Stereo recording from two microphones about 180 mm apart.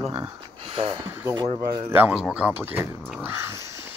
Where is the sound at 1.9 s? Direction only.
10° right (ahead or behind).